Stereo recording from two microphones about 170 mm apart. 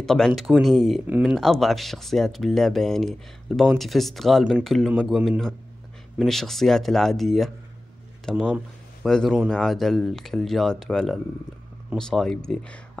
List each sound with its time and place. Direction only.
0.0 s speech: centre (ahead or behind)